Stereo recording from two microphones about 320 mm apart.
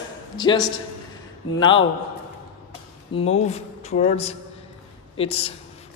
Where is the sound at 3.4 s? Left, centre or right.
Centre.